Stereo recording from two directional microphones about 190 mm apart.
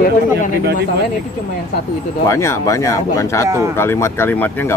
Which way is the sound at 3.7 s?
15° left (ahead or behind).